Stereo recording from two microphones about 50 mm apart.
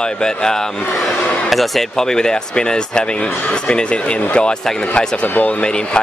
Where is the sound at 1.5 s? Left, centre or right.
Centre; by 5.6 s left.